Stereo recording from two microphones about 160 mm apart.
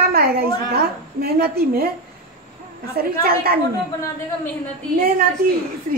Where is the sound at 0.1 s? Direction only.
75° right (ahead or behind).